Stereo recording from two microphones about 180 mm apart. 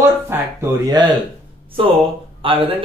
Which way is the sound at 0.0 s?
15° right (ahead or behind).